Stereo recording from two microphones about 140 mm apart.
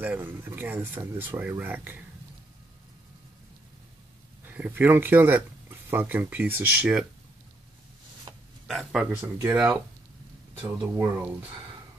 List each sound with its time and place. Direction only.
0.0 s speech: 15° right (ahead or behind)
4.5 s speech: 15° right (ahead or behind)
8.6 s speech: centre (ahead or behind)
9.0 s speech: 15° right (ahead or behind)